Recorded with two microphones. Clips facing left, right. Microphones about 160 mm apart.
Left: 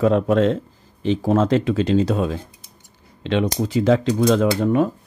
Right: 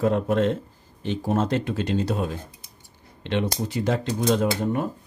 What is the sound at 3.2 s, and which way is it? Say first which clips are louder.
Speech: left 5 dB; 90° left.